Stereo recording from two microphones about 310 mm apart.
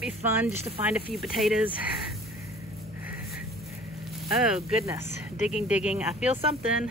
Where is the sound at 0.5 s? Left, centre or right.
Centre.